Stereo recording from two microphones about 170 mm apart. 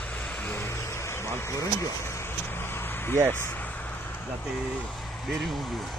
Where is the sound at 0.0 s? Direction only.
10° left (ahead or behind).